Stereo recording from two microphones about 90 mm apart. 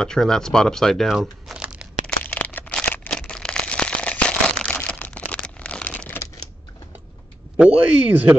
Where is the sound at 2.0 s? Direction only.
15° left (ahead or behind).